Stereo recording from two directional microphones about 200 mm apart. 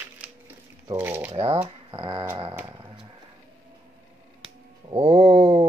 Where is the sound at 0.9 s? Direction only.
10° right (ahead or behind).